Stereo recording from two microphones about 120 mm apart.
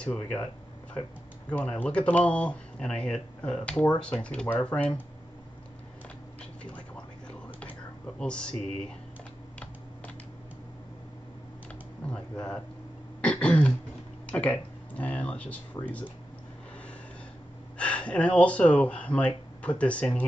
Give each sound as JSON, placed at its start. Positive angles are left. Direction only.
{"t": 0.0, "sound": "speech", "side_deg": 10}
{"t": 1.5, "sound": "speech", "side_deg": 10}
{"t": 8.2, "sound": "speech", "side_deg": 10}
{"t": 12.1, "sound": "speech", "side_deg": 10}
{"t": 13.2, "sound": "throat clearing", "side_deg": 10}
{"t": 14.2, "sound": "speech", "side_deg": 10}
{"t": 17.7, "sound": "speech", "side_deg": 10}